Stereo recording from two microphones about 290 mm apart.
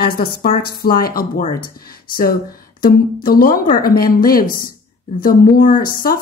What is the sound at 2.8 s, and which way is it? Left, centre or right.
A woman's voice, left.